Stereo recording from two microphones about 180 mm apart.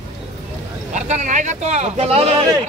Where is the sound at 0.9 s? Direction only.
40° right (ahead or behind).